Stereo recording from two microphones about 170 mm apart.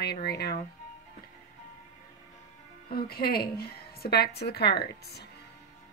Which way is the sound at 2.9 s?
65° left (ahead or behind).